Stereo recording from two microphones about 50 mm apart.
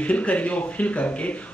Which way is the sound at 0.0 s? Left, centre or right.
Left.